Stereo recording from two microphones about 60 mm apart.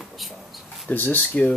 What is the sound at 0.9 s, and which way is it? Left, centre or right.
Speech, left.